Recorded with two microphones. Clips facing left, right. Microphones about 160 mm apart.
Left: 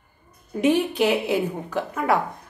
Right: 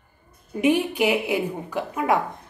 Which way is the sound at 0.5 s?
10° right (ahead or behind).